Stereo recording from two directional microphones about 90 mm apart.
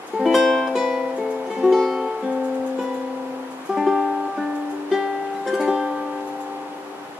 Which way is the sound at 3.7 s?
5° right (ahead or behind).